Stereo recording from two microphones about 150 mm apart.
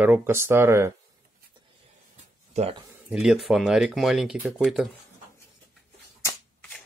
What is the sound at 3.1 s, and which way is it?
Speech, 5° right (ahead or behind).